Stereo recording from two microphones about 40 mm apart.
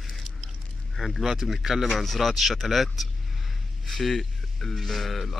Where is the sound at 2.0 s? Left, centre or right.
Centre.